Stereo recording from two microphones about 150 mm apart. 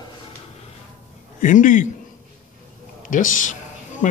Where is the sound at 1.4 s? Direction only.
60° left (ahead or behind).